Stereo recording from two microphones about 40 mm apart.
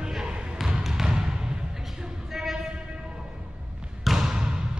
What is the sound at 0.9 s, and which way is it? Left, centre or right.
Music, centre.